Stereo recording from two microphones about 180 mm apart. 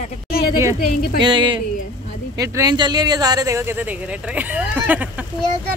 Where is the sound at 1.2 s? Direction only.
25° right (ahead or behind); by 5.0 s 10° right (ahead or behind).